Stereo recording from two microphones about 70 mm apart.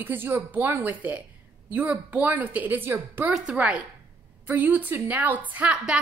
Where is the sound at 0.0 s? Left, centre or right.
Right.